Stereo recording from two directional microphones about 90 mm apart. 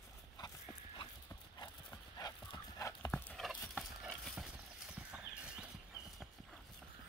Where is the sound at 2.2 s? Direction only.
55° left (ahead or behind).